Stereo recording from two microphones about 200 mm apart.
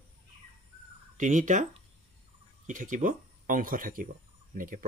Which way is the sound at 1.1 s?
40° right (ahead or behind).